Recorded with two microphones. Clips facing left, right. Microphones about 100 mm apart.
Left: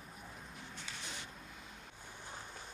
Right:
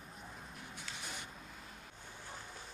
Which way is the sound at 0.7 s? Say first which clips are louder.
Right 1 dB; 10° right (ahead or behind).